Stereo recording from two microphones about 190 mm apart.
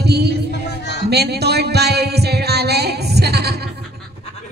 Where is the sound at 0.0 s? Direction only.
60° right (ahead or behind).